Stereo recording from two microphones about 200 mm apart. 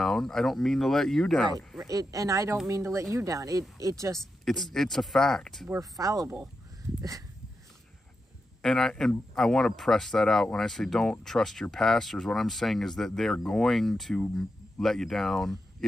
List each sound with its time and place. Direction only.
0.0 s speech: centre (ahead or behind)
1.9 s speech: 15° right (ahead or behind)
4.2 s speech: centre (ahead or behind)
5.7 s speech: 15° right (ahead or behind)
8.6 s speech: centre (ahead or behind)